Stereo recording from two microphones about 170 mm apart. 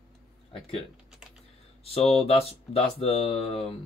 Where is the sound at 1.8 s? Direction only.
35° left (ahead or behind).